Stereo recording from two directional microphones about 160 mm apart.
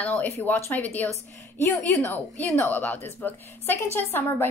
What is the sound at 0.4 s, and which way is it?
A woman's voice, 10° left (ahead or behind).